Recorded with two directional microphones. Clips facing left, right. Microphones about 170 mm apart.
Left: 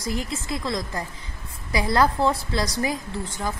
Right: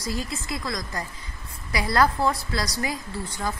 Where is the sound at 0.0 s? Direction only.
25° left (ahead or behind).